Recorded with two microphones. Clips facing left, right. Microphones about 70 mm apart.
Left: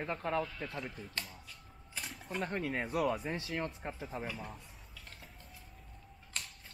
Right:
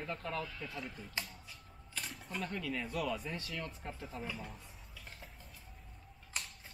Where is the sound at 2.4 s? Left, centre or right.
Left.